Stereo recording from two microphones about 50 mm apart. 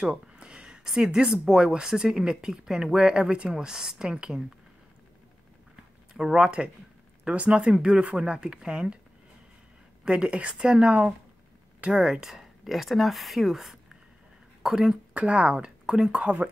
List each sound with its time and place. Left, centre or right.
0.0 s speech: centre
6.3 s speech: centre
10.0 s speech: centre
12.3 s speech: centre
15.1 s speech: right